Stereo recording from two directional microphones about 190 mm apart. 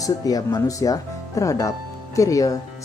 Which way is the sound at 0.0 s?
20° left (ahead or behind).